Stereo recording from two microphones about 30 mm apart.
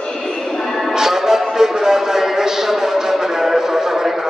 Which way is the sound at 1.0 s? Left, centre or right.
Centre.